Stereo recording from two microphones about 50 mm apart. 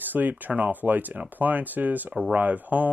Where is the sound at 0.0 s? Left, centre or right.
Right.